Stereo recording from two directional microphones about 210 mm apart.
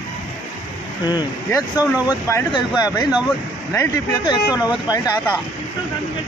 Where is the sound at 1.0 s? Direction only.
20° left (ahead or behind).